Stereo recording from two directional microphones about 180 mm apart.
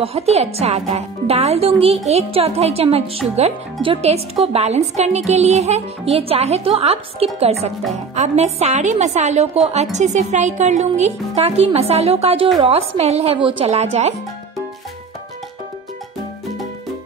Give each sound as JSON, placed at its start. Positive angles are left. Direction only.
{"t": 0.0, "sound": "speech", "side_deg": -35}